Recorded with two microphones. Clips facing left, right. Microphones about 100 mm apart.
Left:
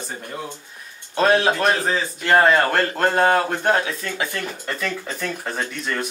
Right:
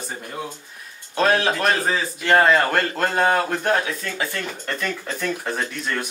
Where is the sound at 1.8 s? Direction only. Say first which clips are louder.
Even; 5° right (ahead or behind).